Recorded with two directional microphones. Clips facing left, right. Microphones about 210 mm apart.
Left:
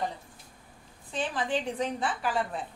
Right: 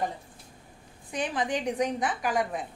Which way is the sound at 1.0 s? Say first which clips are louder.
Right 2 dB; 15° right (ahead or behind).